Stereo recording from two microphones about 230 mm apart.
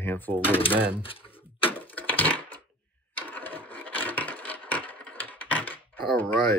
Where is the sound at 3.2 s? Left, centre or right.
Centre.